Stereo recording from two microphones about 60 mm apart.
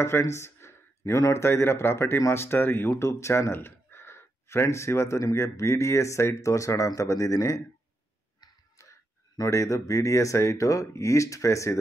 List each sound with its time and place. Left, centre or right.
0.2 s a sound: left
1.3 s speech: left
3.5 s speech: left
9.4 s speech: left